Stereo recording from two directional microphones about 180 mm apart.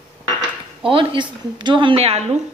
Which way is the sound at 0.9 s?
25° right (ahead or behind).